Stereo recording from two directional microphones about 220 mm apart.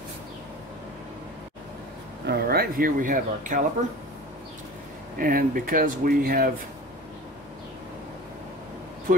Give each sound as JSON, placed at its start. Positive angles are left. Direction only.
{"t": 2.2, "sound": "speech", "side_deg": -45}
{"t": 5.1, "sound": "speech", "side_deg": -40}